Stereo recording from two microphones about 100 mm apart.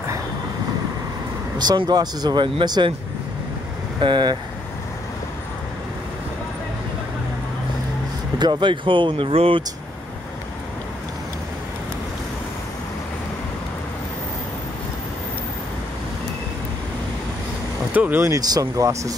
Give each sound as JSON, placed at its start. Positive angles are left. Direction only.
{"t": 1.8, "sound": "speech", "side_deg": -45}
{"t": 4.0, "sound": "speech", "side_deg": -50}
{"t": 8.4, "sound": "speech", "side_deg": -50}
{"t": 17.9, "sound": "speech", "side_deg": -20}
{"t": 18.3, "sound": "speech", "side_deg": -35}